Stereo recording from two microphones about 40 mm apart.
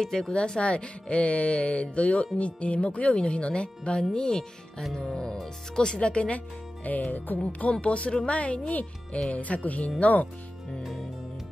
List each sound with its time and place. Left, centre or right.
0.0 s speech: centre
0.3 s speech: left
7.1 s music: left
7.7 s speech: left
10.8 s music: centre